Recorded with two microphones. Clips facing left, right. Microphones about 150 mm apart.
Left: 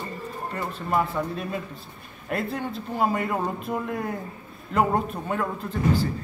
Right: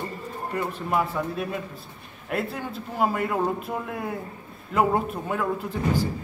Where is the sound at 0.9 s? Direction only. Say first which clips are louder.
Left 1 dB; 5° right (ahead or behind).